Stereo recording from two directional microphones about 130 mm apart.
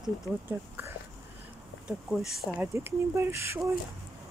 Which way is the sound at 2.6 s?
20° right (ahead or behind).